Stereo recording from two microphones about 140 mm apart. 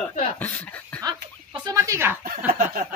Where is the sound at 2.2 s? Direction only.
90° right.